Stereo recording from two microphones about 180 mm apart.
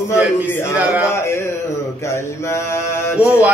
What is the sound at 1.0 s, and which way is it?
Mantra, 15° left (ahead or behind).